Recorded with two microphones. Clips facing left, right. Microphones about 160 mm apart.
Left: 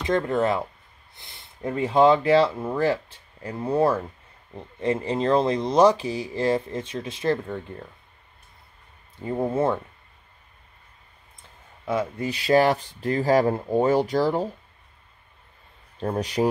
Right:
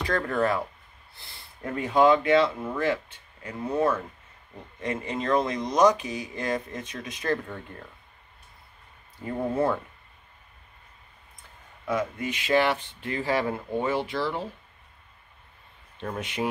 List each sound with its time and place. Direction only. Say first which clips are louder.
0.0 s speech: left 3 dB; 20° left (ahead or behind)
9.2 s speech: left 3 dB; 20° left (ahead or behind)
11.8 s speech: left 2 dB; 30° left (ahead or behind)
16.0 s speech: left 7 dB; 35° left (ahead or behind)